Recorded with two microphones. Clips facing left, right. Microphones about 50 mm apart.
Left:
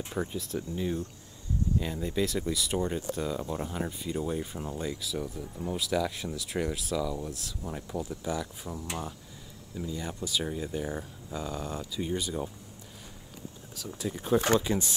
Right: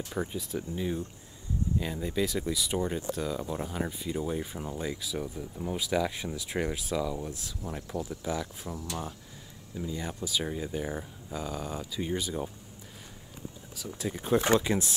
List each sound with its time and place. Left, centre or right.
0.2 s speech: centre
1.8 s speech: centre
3.4 s speech: centre
13.7 s speech: centre
14.1 s speech: centre